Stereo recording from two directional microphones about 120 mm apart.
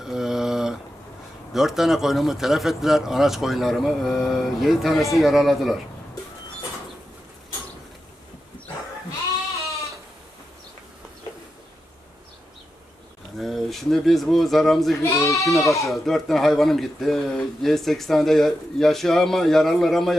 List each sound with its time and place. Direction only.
0.0 s mantra: 5° right (ahead or behind)
1.5 s speech: 5° right (ahead or behind)
13.4 s speech: centre (ahead or behind)
15.0 s speech: 25° left (ahead or behind)
15.8 s speech: centre (ahead or behind)